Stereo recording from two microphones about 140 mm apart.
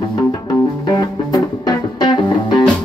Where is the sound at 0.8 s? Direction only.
30° left (ahead or behind).